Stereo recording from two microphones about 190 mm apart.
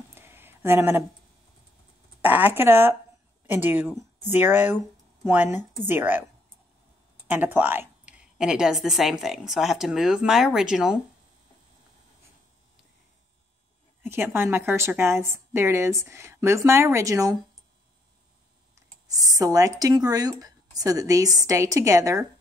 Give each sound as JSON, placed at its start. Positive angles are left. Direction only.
{"t": 0.1, "sound": "a sound", "side_deg": -10}
{"t": 2.2, "sound": "a woman's voice", "side_deg": -10}
{"t": 7.2, "sound": "a woman's voice", "side_deg": -10}
{"t": 14.0, "sound": "a woman's voice", "side_deg": -10}
{"t": 19.0, "sound": "a woman's voice", "side_deg": -20}